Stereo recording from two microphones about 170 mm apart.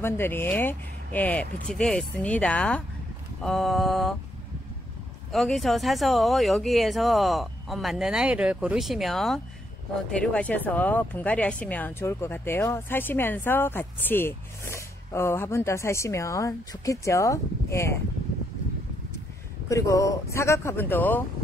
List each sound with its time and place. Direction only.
0.0 s speech: 15° left (ahead or behind)
5.3 s speech: centre (ahead or behind); by 17.9 s 15° left (ahead or behind)
19.7 s speech: 20° left (ahead or behind)